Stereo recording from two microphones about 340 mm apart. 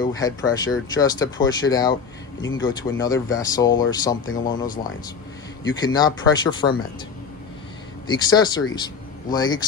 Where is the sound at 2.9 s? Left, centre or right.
Centre.